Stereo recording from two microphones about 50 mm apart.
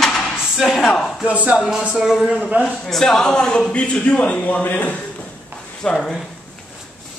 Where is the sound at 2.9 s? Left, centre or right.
Centre; by 5.0 s left.